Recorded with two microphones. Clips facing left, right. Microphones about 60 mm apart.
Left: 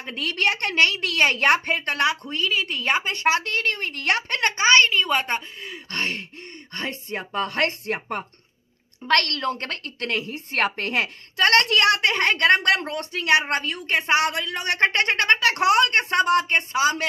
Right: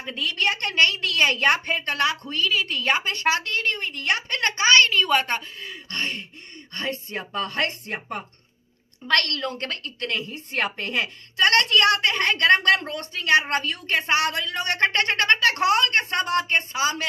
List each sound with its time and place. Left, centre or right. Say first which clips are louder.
0.0 s a woman's voice: left 1 dB; left
4.3 s a woman's voice: left 1 dB; left
5.9 s a woman's voice: left 2 dB; left
6.5 s a woman's voice: right 2 dB; left
11.3 s a woman's voice: left 1 dB; left